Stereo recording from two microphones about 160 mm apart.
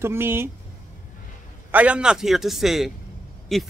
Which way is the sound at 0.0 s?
15° right (ahead or behind).